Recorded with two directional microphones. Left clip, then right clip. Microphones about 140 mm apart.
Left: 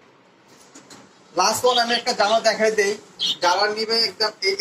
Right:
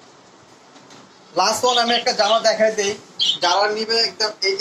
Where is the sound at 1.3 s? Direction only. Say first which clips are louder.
Right 1 dB; 30° right (ahead or behind).